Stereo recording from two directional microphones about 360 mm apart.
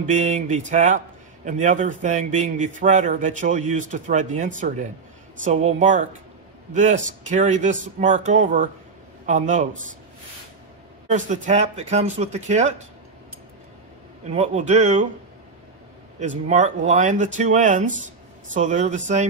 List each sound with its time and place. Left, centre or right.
0.0 s a man's voice: centre
11.1 s a man's voice: centre
14.3 s speech: centre
16.4 s a man's voice: centre